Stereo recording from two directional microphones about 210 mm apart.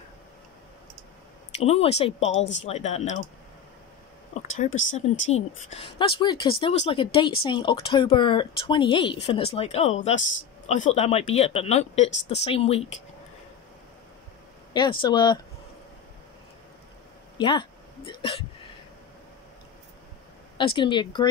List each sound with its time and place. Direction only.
1.6 s speech: 30° left (ahead or behind)
4.3 s a sound: 35° left (ahead or behind)
4.7 s speech: 35° left (ahead or behind)
14.7 s speech: 20° left (ahead or behind)
17.4 s a sound: 25° left (ahead or behind)
20.5 s speech: 25° left (ahead or behind)